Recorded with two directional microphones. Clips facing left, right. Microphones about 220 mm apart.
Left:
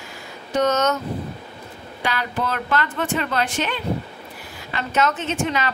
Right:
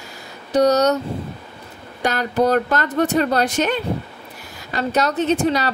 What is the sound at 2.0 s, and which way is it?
A woman's voice, 40° right (ahead or behind).